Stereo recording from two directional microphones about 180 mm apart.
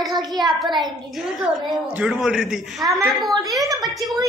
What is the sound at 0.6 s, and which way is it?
Speech, centre (ahead or behind).